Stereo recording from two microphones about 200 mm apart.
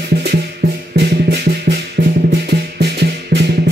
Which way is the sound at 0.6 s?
50° right (ahead or behind).